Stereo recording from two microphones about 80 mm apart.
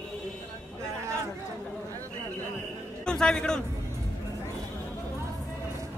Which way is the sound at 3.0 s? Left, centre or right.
Centre.